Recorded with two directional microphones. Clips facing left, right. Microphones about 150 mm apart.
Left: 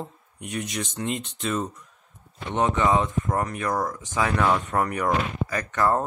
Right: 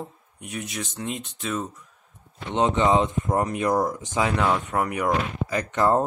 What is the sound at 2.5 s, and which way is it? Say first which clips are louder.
Speech: right 2 dB; 20° right (ahead or behind).